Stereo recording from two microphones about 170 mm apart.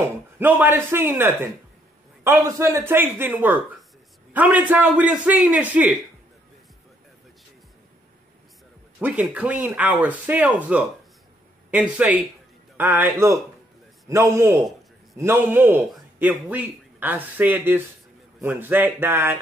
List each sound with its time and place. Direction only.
0.0 s speech: 10° right (ahead or behind)
9.0 s a man's voice: 10° right (ahead or behind)